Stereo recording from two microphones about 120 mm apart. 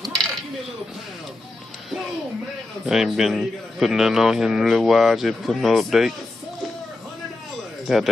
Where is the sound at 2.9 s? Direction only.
5° right (ahead or behind).